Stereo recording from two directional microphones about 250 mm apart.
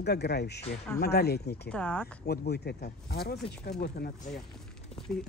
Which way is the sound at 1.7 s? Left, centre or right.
Centre.